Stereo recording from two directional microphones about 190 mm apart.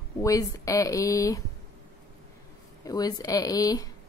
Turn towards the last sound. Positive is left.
turn(degrees=20)  # may be behind; listen again after turning